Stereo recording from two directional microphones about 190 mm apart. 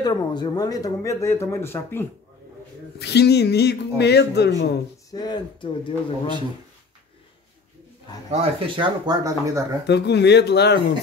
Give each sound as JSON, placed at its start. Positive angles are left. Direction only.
{"t": 0.0, "sound": "speech", "side_deg": 20}
{"t": 3.0, "sound": "speech", "side_deg": 60}
{"t": 5.1, "sound": "speech", "side_deg": 20}
{"t": 8.3, "sound": "speech", "side_deg": -30}
{"t": 9.8, "sound": "speech", "side_deg": 60}